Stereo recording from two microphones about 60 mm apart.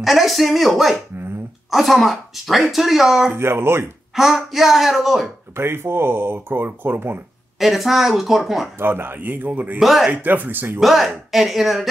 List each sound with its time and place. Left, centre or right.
0.0 s speech: centre
3.3 s speech: right
4.1 s speech: centre
5.6 s speech: right
7.5 s speech: centre
8.7 s speech: right
9.8 s speech: centre
10.1 s speech: right
10.8 s speech: centre